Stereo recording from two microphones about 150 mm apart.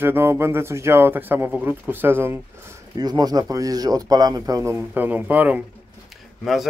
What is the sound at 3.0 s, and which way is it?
Speech, 25° right (ahead or behind).